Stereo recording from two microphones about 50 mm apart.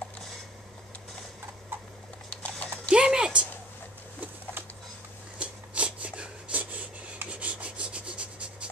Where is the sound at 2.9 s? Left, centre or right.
Centre.